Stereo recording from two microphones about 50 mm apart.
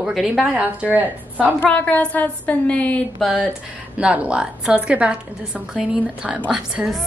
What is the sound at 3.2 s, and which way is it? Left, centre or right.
Speech, centre.